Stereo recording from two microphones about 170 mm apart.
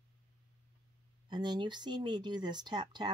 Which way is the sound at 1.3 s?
25° right (ahead or behind).